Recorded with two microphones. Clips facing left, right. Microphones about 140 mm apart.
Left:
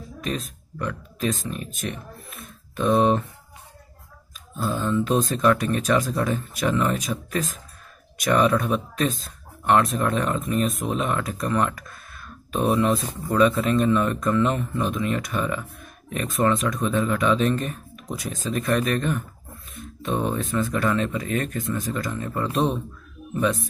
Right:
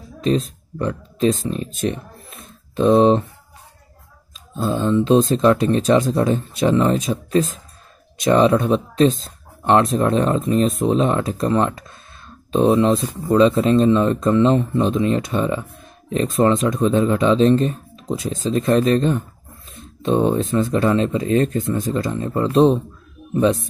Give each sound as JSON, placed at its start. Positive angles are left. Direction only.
{"t": 0.2, "sound": "speech", "side_deg": -30}
{"t": 4.6, "sound": "speech", "side_deg": -25}